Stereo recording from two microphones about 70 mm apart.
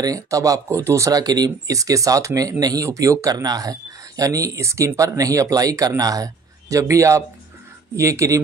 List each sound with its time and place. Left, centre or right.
0.0 s speech: right